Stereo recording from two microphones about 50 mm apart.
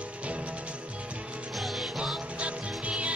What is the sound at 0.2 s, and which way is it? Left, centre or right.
Music, right.